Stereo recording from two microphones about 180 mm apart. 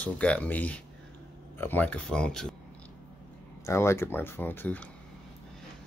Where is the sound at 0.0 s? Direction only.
5° left (ahead or behind).